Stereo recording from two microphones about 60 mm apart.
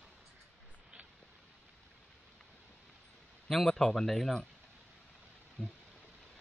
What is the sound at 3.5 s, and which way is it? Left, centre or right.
Speech, centre.